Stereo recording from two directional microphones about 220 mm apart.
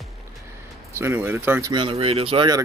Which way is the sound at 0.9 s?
10° right (ahead or behind).